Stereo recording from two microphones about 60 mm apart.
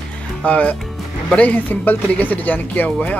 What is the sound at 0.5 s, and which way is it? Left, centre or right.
Speech, left.